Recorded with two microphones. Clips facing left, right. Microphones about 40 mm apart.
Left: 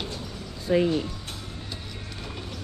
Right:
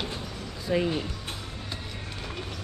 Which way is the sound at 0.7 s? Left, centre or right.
Centre.